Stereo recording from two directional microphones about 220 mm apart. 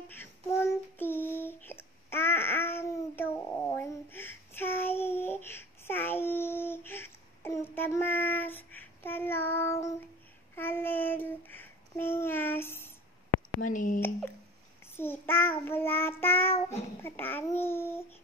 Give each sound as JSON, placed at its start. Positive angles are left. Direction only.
{"t": 0.1, "sound": "child singing", "side_deg": 10}
{"t": 13.7, "sound": "a sound", "side_deg": 35}
{"t": 15.0, "sound": "child singing", "side_deg": 10}
{"t": 17.0, "sound": "babbling", "side_deg": 10}